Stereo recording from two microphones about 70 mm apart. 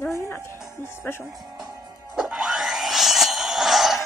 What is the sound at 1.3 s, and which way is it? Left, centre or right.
Speech, right.